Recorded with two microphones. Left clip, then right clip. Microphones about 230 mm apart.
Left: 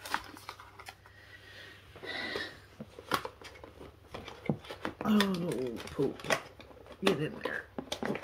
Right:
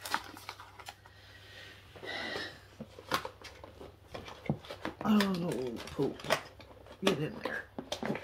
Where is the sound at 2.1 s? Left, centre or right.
Centre.